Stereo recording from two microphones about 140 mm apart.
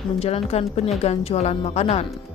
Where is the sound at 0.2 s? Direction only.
45° left (ahead or behind).